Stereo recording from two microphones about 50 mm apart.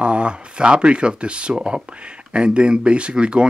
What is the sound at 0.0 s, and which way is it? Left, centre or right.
Speech, right.